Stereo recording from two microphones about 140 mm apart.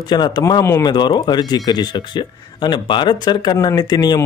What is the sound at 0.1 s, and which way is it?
Speech, 30° left (ahead or behind).